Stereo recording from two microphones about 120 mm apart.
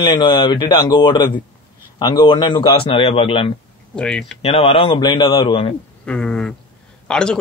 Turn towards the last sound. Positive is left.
turn(degrees=5)  # may be behind; listen again after turning